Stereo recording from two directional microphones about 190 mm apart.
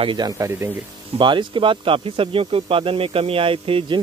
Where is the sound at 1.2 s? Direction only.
25° right (ahead or behind).